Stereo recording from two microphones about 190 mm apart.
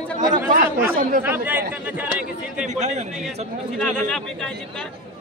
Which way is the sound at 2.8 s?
40° right (ahead or behind).